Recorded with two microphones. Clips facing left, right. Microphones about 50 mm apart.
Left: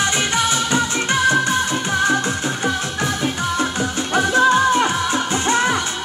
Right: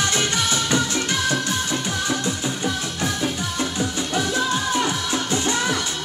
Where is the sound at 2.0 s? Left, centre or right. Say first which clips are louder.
Left 6 dB; left.